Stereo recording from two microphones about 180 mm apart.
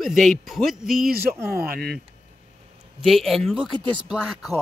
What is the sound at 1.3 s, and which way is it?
Speech, 15° right (ahead or behind).